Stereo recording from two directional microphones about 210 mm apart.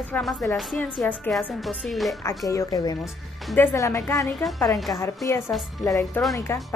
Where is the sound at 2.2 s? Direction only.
15° left (ahead or behind).